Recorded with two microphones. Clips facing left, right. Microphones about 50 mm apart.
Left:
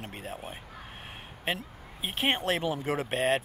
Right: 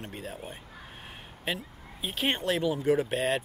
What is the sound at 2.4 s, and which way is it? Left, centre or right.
Speech, left.